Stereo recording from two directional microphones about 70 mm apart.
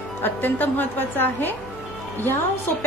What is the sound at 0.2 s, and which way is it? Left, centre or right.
A woman's voice, left.